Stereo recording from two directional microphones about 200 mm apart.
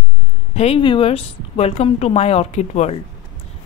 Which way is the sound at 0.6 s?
30° left (ahead or behind).